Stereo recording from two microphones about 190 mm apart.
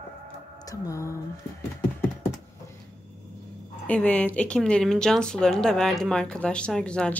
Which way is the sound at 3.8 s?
5° left (ahead or behind).